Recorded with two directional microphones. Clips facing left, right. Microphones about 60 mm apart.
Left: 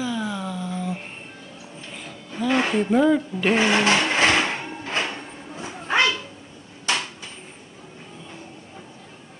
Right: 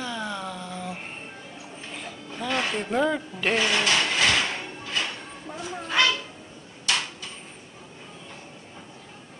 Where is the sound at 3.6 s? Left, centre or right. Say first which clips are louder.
Left 4 dB; left.